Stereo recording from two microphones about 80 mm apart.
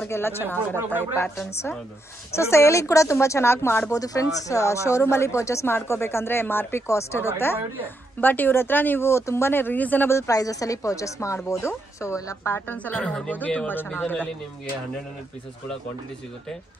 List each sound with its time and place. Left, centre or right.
0.1 s speech: left
0.7 s speech: right
2.3 s a woman's voice: left
3.9 s a woman's voice: left
8.2 s speech: left
10.0 s a woman's voice: left
12.7 s a woman's voice: centre